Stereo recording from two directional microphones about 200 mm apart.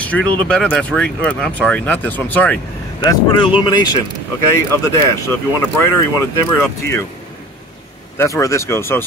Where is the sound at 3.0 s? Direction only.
20° left (ahead or behind).